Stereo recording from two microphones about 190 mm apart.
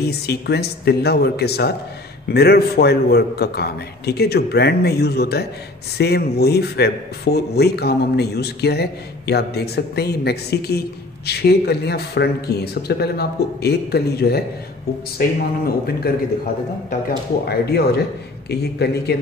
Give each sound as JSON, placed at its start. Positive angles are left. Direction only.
{"t": 0.0, "sound": "a man's voice", "side_deg": 60}
{"t": 17.5, "sound": "a man's voice", "side_deg": 55}